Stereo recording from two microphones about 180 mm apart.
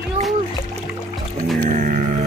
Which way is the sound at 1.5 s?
50° right (ahead or behind).